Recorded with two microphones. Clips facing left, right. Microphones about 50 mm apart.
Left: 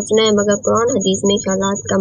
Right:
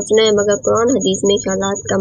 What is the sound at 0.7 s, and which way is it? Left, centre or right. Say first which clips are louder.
Speech: right 1 dB; centre.